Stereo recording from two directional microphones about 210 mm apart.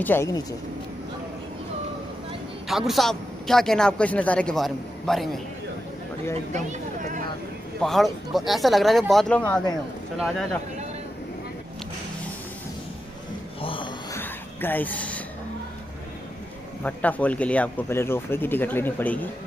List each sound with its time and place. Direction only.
0.0 s speech: 10° left (ahead or behind)
2.7 s speech: centre (ahead or behind)
6.5 s speech: 35° right (ahead or behind)
7.8 s speech: centre (ahead or behind)
13.6 s a sound: 25° left (ahead or behind)
14.1 s a sound: 10° left (ahead or behind)
16.8 s speech: 5° left (ahead or behind)